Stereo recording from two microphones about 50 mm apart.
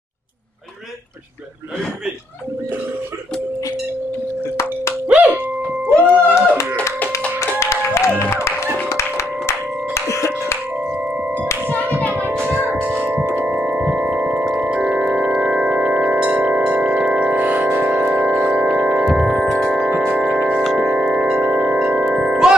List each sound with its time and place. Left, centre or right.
5.0 s music: right
5.9 s music: left
7.6 s music: left
11.6 s music: right
14.9 s organ: centre
15.4 s music: right
19.0 s music: centre
20.2 s music: right
21.5 s music: right; by 22.5 s centre